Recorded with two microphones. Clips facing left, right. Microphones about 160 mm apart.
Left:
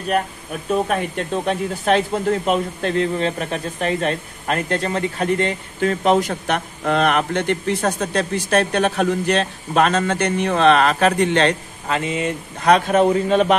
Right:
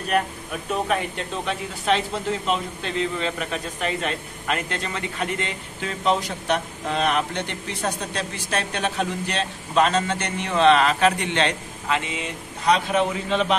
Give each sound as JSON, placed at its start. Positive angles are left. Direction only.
{"t": 0.8, "sound": "speech", "side_deg": 45}